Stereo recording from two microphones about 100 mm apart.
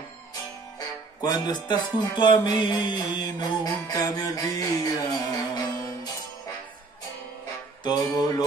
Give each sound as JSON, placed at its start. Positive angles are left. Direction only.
{"t": 0.7, "sound": "music", "side_deg": 40}
{"t": 7.8, "sound": "music", "side_deg": 40}